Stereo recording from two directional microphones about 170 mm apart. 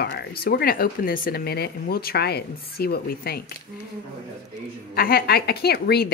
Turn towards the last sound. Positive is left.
turn(degrees=70)  # may be behind; listen again after turning